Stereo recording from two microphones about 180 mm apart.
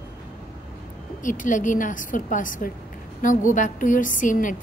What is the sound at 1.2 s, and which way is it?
A woman's voice, 45° left (ahead or behind).